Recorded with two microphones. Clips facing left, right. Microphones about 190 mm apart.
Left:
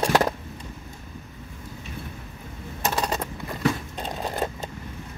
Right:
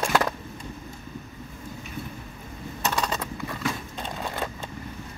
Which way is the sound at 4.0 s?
35° left (ahead or behind).